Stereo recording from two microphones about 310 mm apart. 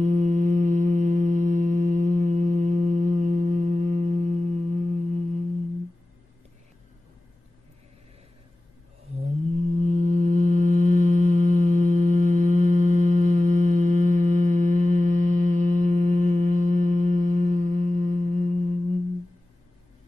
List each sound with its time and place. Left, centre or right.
0.0 s music: right
9.0 s mantra: right